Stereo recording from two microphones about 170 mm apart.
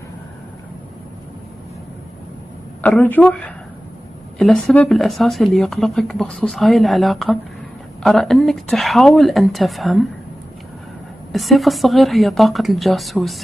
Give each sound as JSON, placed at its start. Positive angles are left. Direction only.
{"t": 2.8, "sound": "a woman's voice", "side_deg": 10}
{"t": 11.3, "sound": "speech", "side_deg": 0}